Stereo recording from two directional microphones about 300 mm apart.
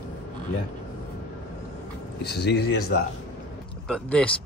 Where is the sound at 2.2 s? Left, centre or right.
Left.